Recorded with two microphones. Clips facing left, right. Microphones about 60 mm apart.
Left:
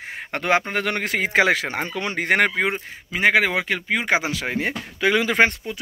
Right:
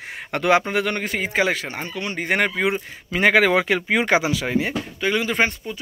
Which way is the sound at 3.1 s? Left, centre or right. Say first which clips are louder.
Right 2 dB; centre.